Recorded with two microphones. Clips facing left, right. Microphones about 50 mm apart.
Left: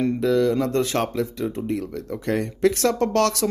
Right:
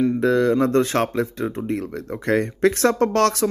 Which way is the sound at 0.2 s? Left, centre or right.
Right.